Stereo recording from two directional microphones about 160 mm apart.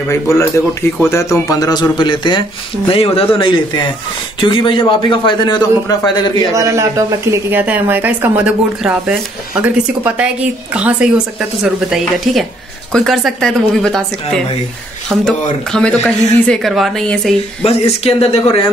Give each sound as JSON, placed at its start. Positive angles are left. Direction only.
{"t": 0.1, "sound": "a man's voice", "side_deg": 20}
{"t": 6.5, "sound": "speech", "side_deg": -20}
{"t": 15.7, "sound": "speech", "side_deg": 5}
{"t": 17.6, "sound": "a man's voice", "side_deg": 40}